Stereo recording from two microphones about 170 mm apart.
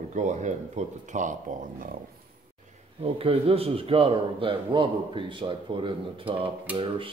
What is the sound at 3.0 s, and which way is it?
Speech, 35° right (ahead or behind).